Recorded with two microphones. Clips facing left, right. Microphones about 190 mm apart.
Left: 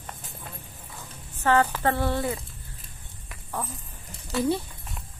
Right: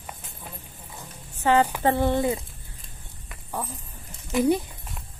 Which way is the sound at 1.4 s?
15° right (ahead or behind).